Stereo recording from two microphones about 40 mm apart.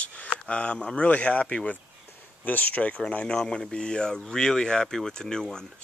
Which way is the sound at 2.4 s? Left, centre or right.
Left.